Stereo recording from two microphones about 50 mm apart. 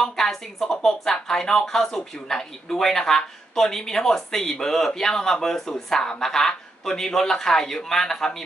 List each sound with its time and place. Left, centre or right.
0.0 s speech: centre